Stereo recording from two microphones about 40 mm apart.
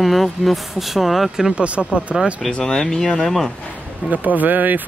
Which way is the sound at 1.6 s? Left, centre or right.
Right.